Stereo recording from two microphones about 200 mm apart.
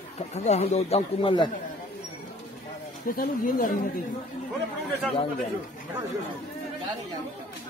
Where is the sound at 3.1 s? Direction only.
45° left (ahead or behind).